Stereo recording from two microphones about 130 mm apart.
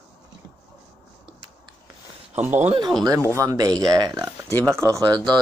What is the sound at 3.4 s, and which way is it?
Speech, 30° right (ahead or behind).